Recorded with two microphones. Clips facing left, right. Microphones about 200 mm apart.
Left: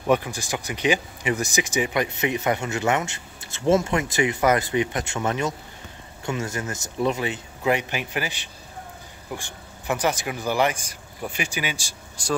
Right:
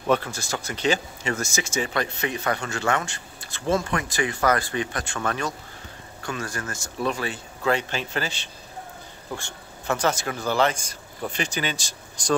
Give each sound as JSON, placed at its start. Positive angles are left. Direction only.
{"t": 0.0, "sound": "speech", "side_deg": 15}